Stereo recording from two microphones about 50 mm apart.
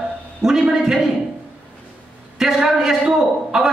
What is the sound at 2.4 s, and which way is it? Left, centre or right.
A man's voice, centre.